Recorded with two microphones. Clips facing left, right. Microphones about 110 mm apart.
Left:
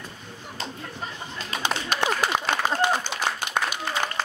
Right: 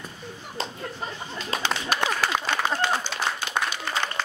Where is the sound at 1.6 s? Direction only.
20° left (ahead or behind).